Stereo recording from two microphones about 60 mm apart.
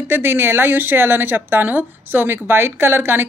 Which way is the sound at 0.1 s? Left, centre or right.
Right.